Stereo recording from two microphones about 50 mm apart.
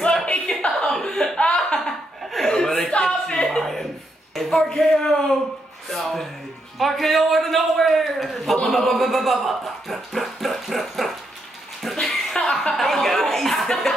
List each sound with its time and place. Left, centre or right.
0.1 s a sound: centre
0.6 s chuckle: centre
1.0 s a sound: centre
1.5 s chuckle: centre
3.0 s music: centre
4.4 s a man's voice: centre
11.8 s chuckle: centre